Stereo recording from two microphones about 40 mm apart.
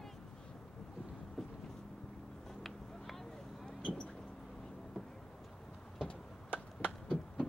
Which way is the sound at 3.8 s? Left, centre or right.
Left.